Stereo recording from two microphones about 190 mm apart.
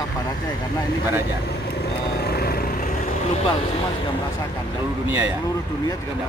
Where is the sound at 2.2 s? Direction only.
55° left (ahead or behind).